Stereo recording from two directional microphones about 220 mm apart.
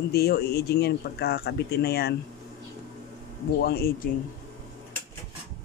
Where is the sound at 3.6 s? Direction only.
45° left (ahead or behind).